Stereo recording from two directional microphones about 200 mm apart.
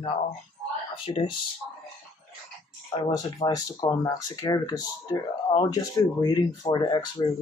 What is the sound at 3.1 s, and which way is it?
Speech, 20° left (ahead or behind).